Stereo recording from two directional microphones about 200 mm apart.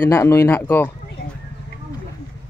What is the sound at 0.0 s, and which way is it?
Speech, 15° left (ahead or behind).